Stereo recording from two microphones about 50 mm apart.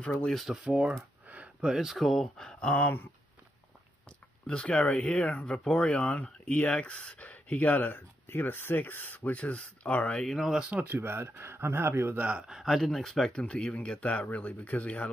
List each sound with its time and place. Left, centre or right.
0.5 s speech: centre
1.2 s a sound: right
1.6 s speech: centre
2.0 s speech: centre
2.6 s speech: left
4.5 s speech: centre
5.9 s speech: left
10.2 s speech: centre
10.9 s speech: right
12.2 s a man's voice: right
12.4 s speech: centre
13.3 s speech: centre